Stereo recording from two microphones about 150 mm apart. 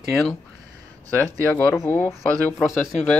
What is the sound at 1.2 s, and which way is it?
Speech, 10° left (ahead or behind).